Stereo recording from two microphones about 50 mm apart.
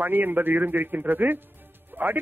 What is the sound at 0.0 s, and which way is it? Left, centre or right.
A man's voice, right.